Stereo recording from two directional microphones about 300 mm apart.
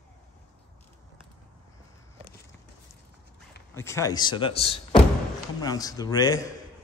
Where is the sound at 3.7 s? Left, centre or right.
Centre.